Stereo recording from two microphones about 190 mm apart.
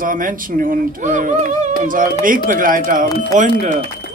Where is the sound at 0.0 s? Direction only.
45° right (ahead or behind).